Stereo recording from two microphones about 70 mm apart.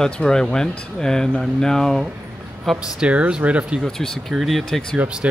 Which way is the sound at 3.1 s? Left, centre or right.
Centre.